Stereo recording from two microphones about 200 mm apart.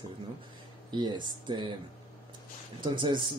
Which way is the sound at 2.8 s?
25° right (ahead or behind).